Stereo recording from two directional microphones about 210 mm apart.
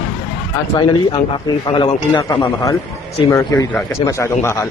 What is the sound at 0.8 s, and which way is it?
A man's voice, 20° left (ahead or behind).